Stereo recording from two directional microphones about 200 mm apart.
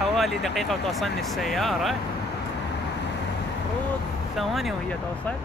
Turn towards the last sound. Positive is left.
turn(degrees=0)  # may be behind; listen again after turning